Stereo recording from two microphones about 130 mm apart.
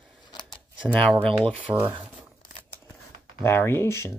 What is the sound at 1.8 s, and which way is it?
Speech, 15° right (ahead or behind).